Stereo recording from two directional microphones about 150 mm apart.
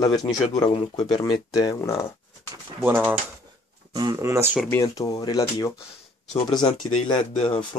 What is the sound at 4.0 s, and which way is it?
Speech, 25° right (ahead or behind).